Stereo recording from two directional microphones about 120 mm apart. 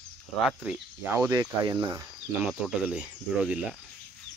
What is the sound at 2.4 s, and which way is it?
Speech, 10° right (ahead or behind).